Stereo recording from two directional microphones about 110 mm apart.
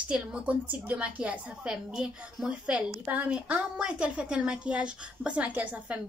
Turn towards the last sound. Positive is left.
turn(degrees=-15)  # may be behind; listen again after turning